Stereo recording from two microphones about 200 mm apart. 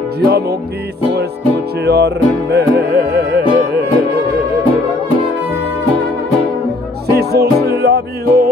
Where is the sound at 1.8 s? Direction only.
55° right (ahead or behind).